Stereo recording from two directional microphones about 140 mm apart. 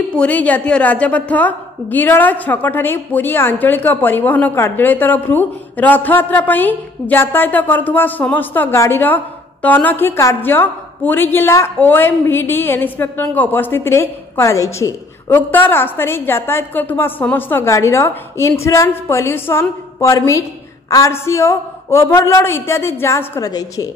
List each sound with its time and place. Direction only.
0.2 s a woman's voice: 10° left (ahead or behind); by 23.9 s 25° left (ahead or behind)